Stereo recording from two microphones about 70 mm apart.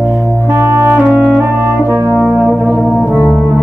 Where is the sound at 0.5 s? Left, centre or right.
Right.